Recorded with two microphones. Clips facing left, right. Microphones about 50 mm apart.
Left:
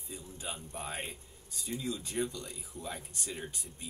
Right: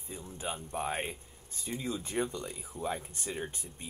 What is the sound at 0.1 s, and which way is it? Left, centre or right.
Speech, right.